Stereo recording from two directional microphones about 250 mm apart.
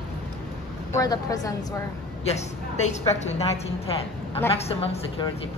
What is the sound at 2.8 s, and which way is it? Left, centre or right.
Speech, left.